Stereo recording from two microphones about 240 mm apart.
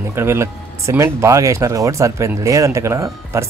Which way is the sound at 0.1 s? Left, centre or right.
Centre.